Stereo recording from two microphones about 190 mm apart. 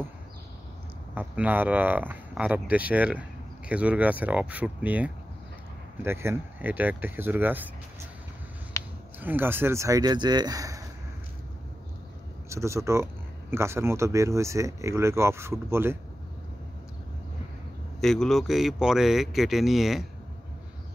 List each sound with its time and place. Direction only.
1.1 s speech: 10° right (ahead or behind)
8.8 s a sound: 15° left (ahead or behind)
9.2 s speech: 10° right (ahead or behind)
12.4 s speech: 15° right (ahead or behind)
18.0 s a man's voice: centre (ahead or behind)